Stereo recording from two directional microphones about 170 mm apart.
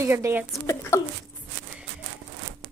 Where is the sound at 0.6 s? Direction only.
15° left (ahead or behind).